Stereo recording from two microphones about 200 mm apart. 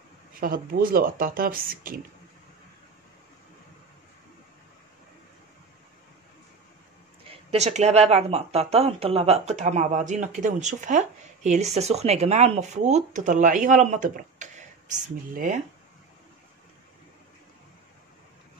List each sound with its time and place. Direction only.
0.3 s speech: 45° right (ahead or behind)
7.2 s speech: 35° right (ahead or behind)